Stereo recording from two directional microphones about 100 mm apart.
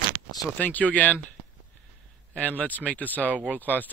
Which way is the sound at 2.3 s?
15° left (ahead or behind).